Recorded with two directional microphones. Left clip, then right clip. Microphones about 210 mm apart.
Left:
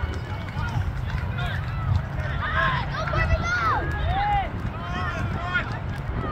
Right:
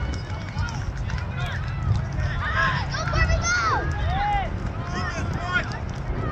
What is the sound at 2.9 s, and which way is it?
Children playing, 35° right (ahead or behind).